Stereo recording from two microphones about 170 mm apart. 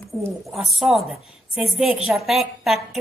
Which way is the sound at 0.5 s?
Centre (ahead or behind).